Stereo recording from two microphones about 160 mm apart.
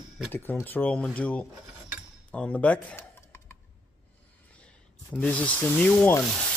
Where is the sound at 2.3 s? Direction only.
10° left (ahead or behind).